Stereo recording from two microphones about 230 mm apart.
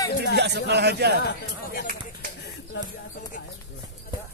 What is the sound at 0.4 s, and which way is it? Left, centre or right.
Speech, right.